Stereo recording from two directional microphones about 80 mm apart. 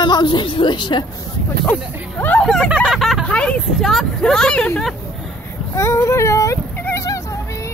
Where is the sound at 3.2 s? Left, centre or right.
Centre.